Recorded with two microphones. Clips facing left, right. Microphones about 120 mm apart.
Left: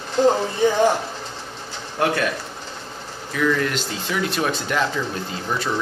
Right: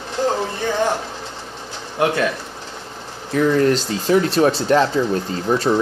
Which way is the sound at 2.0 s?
15° right (ahead or behind).